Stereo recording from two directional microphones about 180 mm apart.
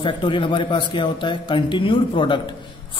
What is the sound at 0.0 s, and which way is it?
A man's voice, 25° left (ahead or behind).